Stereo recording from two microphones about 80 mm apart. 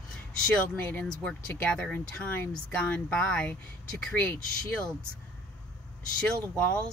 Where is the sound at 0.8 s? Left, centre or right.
Left.